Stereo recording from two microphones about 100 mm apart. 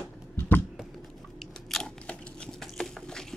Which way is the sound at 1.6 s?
5° left (ahead or behind).